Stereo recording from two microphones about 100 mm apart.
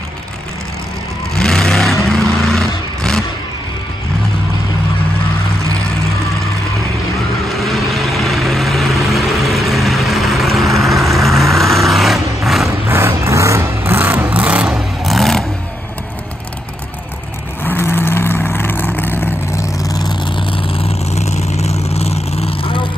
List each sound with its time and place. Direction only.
1.3 s vehicle: 5° left (ahead or behind)
7.4 s vehicle: centre (ahead or behind)
12.6 s vehicle: 25° right (ahead or behind)
15.0 s vehicle: centre (ahead or behind)
17.6 s vehicle: 20° left (ahead or behind); by 20.1 s 35° left (ahead or behind)
20.2 s vehicle: 60° left (ahead or behind); by 22.8 s 80° left